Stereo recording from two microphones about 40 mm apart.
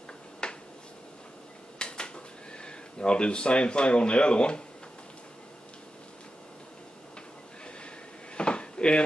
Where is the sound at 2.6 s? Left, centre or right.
Left.